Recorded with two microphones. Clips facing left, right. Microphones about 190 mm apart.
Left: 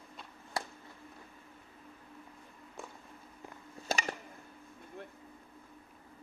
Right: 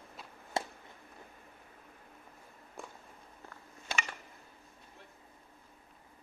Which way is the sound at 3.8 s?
40° left (ahead or behind).